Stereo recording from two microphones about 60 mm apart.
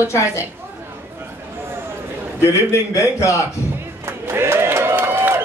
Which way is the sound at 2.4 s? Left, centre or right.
Left.